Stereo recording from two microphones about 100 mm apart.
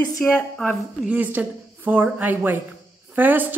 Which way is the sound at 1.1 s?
15° right (ahead or behind).